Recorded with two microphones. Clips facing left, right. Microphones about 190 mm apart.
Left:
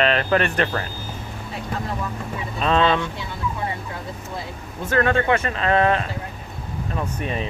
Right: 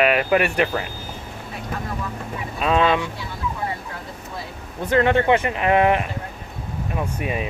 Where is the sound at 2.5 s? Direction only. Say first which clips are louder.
Even; 10° right (ahead or behind).